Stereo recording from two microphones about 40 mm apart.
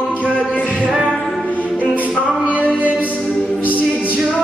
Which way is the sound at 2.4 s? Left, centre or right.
Left.